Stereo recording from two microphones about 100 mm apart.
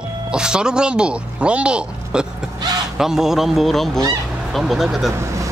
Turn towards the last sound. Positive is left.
turn(degrees=-30)  # may be behind; listen again after turning